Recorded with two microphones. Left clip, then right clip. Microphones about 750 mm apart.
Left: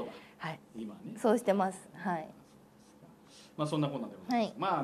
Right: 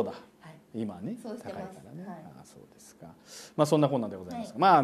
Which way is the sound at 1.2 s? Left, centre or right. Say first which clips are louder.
Left 16 dB; left.